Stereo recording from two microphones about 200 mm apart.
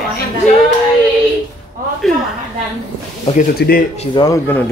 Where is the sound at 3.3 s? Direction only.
30° left (ahead or behind).